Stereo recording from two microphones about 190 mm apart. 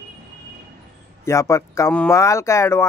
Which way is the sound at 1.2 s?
15° left (ahead or behind).